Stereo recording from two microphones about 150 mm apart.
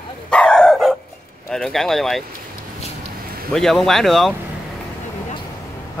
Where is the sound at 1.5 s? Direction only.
Centre (ahead or behind).